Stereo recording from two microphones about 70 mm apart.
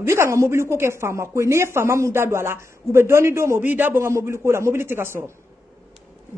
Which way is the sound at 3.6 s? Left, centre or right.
Right.